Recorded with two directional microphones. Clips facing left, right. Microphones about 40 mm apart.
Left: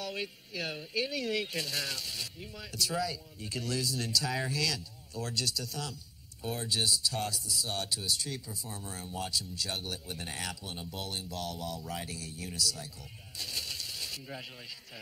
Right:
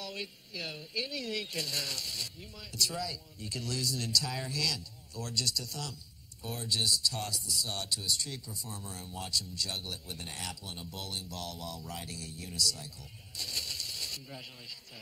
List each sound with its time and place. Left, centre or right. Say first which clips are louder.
0.0 s a man's voice: left 3 dB; centre
11.3 s speech: left 3 dB; left
11.9 s speech: left 3 dB; left
13.4 s bird: even; centre